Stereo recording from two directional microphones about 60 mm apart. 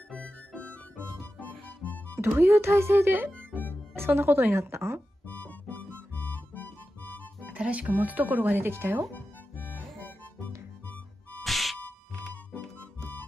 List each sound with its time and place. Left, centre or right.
0.1 s music: centre
2.1 s a woman's voice: right
5.3 s music: left
7.5 s speech: right
9.1 s music: left
11.4 s a sound: centre